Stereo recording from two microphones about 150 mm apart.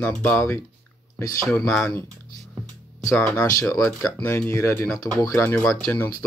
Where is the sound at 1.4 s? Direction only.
5° left (ahead or behind).